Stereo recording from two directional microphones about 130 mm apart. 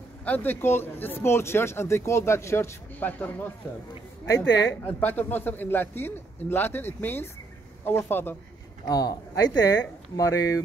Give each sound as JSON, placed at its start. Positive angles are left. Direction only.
{"t": 0.2, "sound": "speech", "side_deg": 15}
{"t": 8.8, "sound": "a man's voice", "side_deg": 30}